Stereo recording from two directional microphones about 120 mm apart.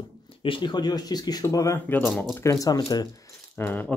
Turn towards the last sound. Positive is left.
turn(degrees=15)  # may be behind; listen again after turning